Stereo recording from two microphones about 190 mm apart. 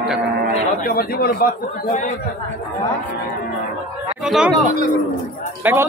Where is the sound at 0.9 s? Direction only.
50° left (ahead or behind).